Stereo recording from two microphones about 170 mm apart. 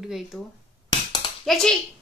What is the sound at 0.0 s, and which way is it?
Speech, centre (ahead or behind).